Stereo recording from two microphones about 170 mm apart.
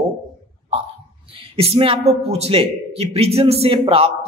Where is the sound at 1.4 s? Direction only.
35° right (ahead or behind).